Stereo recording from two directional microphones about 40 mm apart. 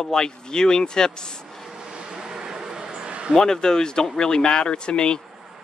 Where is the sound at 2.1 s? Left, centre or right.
Centre.